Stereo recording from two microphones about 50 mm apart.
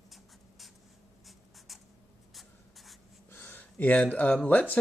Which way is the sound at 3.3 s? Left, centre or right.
Left.